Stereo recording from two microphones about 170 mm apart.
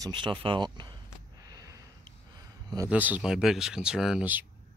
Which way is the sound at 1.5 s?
20° right (ahead or behind).